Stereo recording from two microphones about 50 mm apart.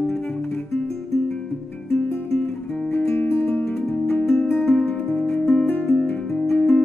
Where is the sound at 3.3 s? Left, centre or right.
Left.